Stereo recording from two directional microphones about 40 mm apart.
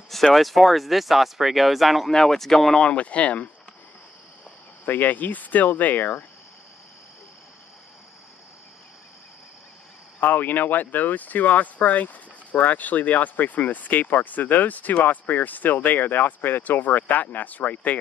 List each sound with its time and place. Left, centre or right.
0.1 s speech: centre
2.0 s speech: centre
2.8 s speech: left
4.8 s speech: left
10.2 s speech: left